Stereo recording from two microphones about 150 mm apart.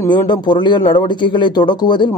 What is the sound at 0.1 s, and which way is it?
Speech, 30° left (ahead or behind).